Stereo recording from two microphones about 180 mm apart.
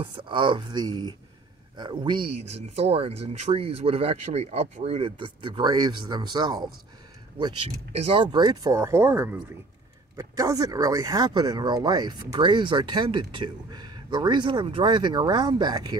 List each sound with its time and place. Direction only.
0.0 s speech: 25° right (ahead or behind)
7.9 s speech: 35° right (ahead or behind)